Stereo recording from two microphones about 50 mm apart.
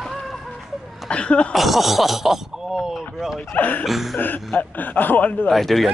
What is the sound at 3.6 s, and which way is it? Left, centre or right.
Speech, left.